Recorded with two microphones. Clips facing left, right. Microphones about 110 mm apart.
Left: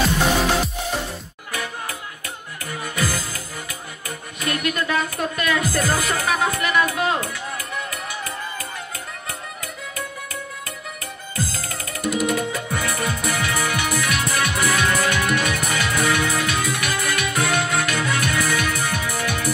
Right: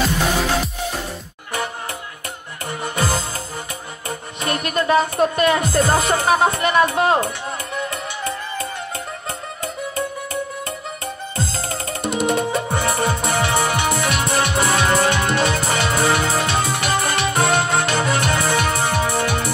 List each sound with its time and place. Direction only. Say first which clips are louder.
2.6 s music: right 3 dB; 30° right (ahead or behind)
4.4 s speech: right 2 dB; 30° right (ahead or behind)
7.9 s music: right 4 dB; 25° right (ahead or behind)